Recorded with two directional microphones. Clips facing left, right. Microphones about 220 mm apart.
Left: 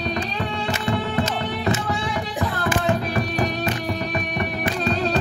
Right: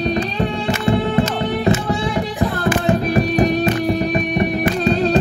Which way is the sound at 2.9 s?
20° right (ahead or behind).